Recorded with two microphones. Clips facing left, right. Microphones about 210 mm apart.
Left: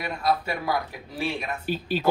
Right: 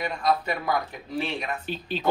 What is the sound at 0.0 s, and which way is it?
A man's voice, 5° left (ahead or behind).